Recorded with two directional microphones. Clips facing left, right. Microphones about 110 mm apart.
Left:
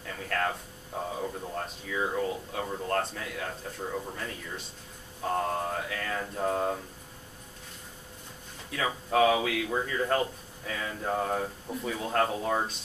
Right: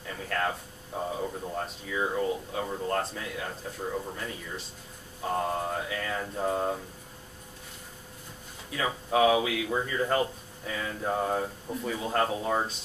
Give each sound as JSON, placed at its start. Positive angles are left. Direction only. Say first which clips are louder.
{"t": 0.0, "sound": "a sound", "louder": "even", "side_deg": -5}
{"t": 5.2, "sound": "speech", "louder": "even", "side_deg": 0}
{"t": 8.6, "sound": "speech", "louder": "even", "side_deg": -5}